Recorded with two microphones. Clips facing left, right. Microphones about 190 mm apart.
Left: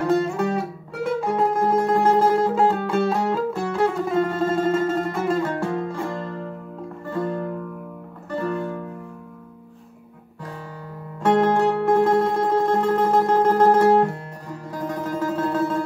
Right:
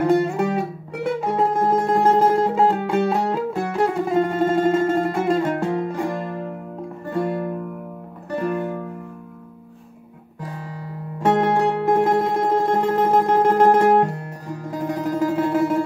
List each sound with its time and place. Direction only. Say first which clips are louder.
0.0 s music: right 2 dB; 15° right (ahead or behind)
11.2 s music: even; 15° right (ahead or behind)